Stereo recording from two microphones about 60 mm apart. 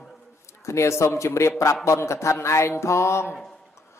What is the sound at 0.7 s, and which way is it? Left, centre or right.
A man's voice, left.